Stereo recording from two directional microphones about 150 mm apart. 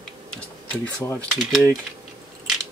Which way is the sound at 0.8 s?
15° left (ahead or behind).